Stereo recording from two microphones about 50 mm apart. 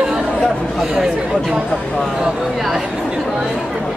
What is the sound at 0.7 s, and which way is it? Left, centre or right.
Speech, centre.